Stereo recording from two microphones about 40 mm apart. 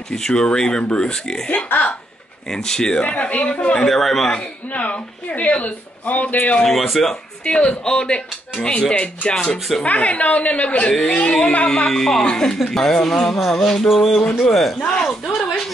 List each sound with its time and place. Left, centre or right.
0.1 s speech: centre
1.7 s speech: left
2.4 s speech: centre; by 3.4 s left
3.8 s speech: centre
4.6 s speech: left
6.8 s speech: centre
7.4 s speech: left
9.3 s speech: left
9.8 s speech: left
11.7 s speech: centre
15.0 s a sound: centre